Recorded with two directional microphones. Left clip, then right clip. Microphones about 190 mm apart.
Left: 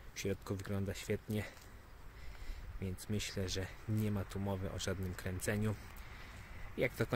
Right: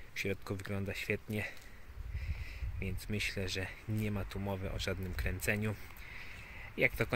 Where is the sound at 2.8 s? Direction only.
5° left (ahead or behind).